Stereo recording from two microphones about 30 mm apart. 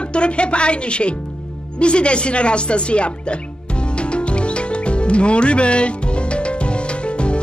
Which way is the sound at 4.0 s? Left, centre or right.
Left.